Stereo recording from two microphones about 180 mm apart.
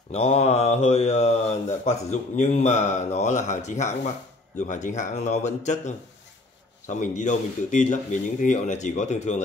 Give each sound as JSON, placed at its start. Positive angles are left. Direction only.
{"t": 0.1, "sound": "speech", "side_deg": 35}